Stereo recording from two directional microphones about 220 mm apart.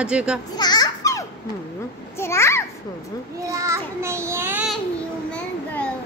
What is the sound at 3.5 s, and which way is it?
Child singing, 15° right (ahead or behind).